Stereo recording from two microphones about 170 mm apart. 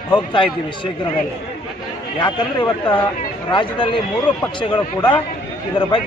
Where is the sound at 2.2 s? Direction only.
30° left (ahead or behind).